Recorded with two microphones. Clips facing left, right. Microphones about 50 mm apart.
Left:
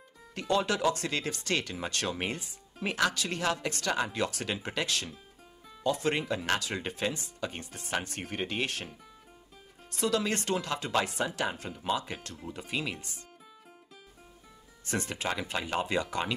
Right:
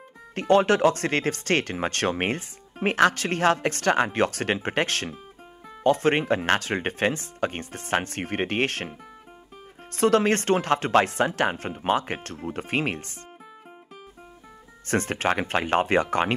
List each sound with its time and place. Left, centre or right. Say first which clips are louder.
0.3 s speech: right 9 dB; right
9.9 s speech: right 9 dB; right
14.9 s speech: right 9 dB; right